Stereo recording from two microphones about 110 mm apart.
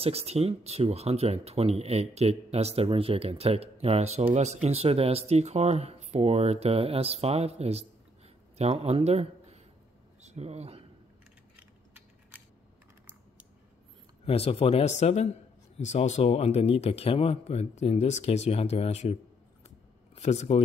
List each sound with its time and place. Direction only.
0.0 s speech: 70° right (ahead or behind)
11.5 s a sound: 15° right (ahead or behind)
14.2 s speech: 60° left (ahead or behind); by 19.1 s 80° left
20.2 s speech: 90° left